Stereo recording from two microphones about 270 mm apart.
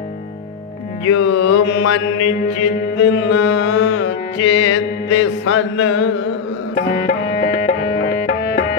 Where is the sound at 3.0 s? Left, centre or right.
Left.